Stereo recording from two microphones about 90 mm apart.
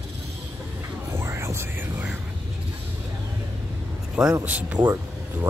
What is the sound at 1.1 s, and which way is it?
Whispering, 30° right (ahead or behind).